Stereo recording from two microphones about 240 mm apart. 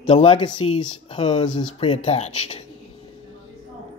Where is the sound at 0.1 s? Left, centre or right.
Left.